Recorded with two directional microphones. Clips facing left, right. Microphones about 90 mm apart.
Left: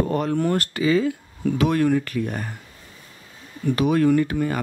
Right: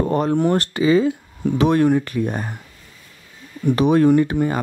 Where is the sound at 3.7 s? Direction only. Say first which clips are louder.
Right 4 dB; 25° right (ahead or behind).